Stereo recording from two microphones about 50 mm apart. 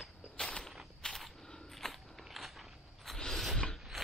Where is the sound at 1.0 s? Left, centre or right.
Centre.